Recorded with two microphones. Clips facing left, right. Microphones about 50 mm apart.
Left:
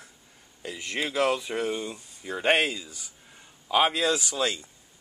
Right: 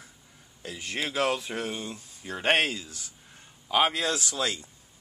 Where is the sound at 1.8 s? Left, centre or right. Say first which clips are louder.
Left 2 dB; centre.